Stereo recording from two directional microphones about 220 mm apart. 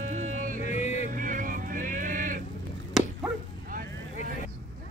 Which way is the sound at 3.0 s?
Centre (ahead or behind).